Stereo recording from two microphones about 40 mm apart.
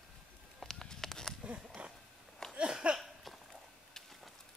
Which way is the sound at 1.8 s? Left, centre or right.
Right.